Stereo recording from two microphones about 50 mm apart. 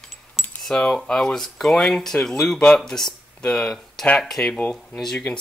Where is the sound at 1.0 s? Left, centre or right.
Centre.